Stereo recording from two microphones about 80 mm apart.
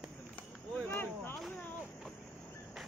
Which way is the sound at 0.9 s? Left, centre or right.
Left.